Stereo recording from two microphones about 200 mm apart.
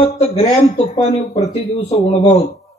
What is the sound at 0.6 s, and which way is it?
Speech, 30° left (ahead or behind).